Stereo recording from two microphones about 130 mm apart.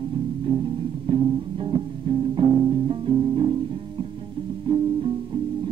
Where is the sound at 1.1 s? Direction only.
45° right (ahead or behind).